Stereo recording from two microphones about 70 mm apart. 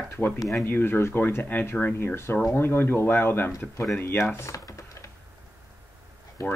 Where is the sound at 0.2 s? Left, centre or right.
Left.